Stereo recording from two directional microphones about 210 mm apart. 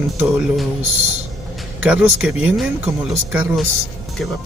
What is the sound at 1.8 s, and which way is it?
Speech, 5° right (ahead or behind).